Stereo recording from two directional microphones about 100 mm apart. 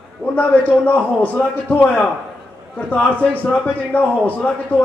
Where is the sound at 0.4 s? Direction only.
15° left (ahead or behind).